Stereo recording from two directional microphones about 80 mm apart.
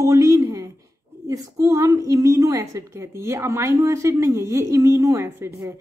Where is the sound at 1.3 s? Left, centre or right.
Right.